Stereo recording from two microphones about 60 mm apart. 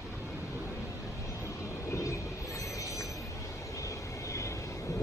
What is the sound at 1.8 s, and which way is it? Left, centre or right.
Vehicle, left.